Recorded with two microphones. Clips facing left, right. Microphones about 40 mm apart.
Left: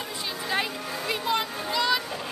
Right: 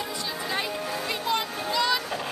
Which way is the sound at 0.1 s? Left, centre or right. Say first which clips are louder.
Left 1 dB; centre.